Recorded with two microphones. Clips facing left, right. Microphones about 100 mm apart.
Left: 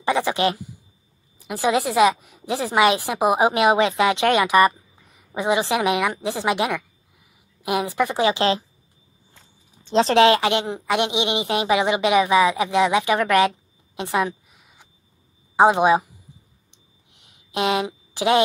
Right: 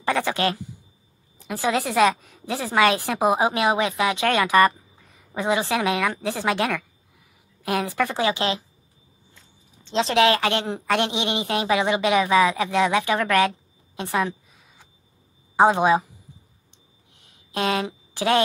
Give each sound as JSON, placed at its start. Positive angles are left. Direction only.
{"t": 0.0, "sound": "a sound", "side_deg": 15}
{"t": 1.5, "sound": "speech", "side_deg": 15}
{"t": 9.9, "sound": "speech", "side_deg": 35}
{"t": 15.5, "sound": "speech", "side_deg": 15}
{"t": 17.5, "sound": "a woman's voice", "side_deg": 15}